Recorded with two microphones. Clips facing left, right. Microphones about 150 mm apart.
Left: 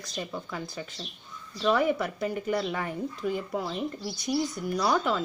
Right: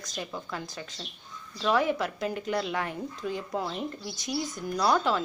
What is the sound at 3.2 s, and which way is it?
Speech, 5° left (ahead or behind).